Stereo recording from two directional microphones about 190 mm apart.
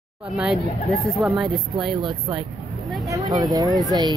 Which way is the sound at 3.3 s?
20° right (ahead or behind).